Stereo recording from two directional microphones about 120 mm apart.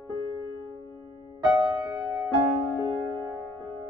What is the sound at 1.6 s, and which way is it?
Music, 30° right (ahead or behind).